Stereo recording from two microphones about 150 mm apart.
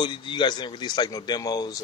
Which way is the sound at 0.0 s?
30° left (ahead or behind).